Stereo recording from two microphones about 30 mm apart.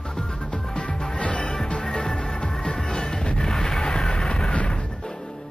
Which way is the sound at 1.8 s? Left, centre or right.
Centre.